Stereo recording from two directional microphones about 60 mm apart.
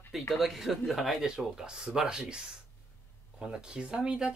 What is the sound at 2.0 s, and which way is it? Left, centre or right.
Speech, centre.